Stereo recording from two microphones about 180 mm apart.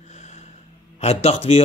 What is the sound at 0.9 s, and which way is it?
Speech, 35° left (ahead or behind).